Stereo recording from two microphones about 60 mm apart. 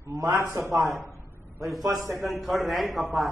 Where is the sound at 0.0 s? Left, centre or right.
Right.